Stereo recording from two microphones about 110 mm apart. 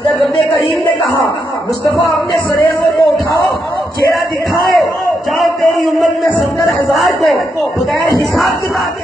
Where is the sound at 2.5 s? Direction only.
30° left (ahead or behind).